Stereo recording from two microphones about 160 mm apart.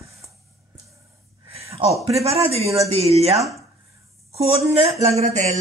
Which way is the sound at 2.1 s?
40° right (ahead or behind).